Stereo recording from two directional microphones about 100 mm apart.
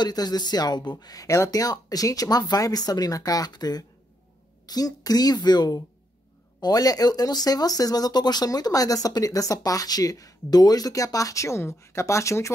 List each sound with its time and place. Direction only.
0.0 s speech: 40° left (ahead or behind)